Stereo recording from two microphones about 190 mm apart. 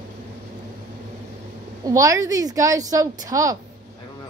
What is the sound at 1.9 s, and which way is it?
A woman's voice, 15° right (ahead or behind).